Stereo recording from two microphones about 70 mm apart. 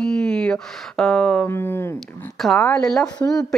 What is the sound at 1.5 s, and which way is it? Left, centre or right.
Speech, left.